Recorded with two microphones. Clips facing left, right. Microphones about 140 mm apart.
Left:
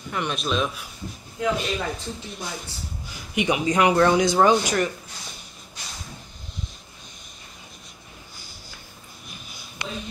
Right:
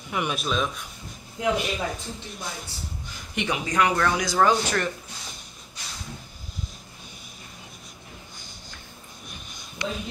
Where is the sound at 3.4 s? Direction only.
20° left (ahead or behind).